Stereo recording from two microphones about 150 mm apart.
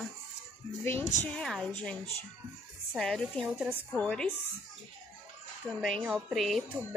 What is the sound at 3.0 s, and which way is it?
Speech, 5° left (ahead or behind).